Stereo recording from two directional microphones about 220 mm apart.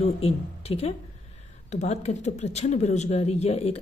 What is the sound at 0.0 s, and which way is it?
Speech, 30° left (ahead or behind).